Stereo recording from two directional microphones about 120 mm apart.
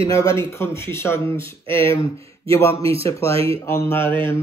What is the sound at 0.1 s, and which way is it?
Speech, 25° left (ahead or behind).